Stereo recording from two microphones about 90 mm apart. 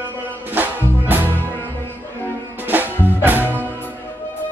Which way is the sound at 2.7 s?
20° right (ahead or behind).